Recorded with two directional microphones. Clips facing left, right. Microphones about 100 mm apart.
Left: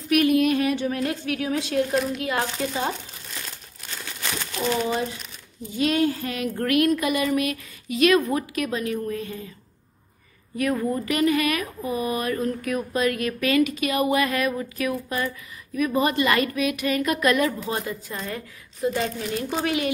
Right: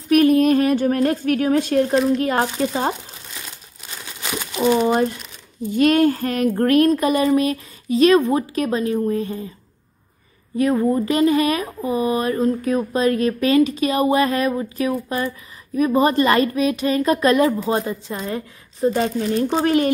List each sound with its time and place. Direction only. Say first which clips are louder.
0.1 s a woman's voice: right 5 dB; 40° right (ahead or behind)
3.4 s crumpling: right 1 dB; 15° right (ahead or behind)
5.8 s speech: right 7 dB; 50° right (ahead or behind); by 9.5 s 30° right (ahead or behind)
10.6 s a woman's voice: right 6 dB; 30° right (ahead or behind)